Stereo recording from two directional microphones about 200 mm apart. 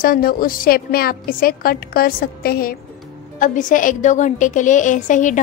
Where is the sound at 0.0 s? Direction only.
45° left (ahead or behind).